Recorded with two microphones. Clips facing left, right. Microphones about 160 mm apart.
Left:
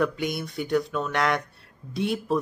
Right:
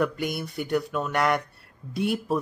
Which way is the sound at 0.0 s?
5° right (ahead or behind).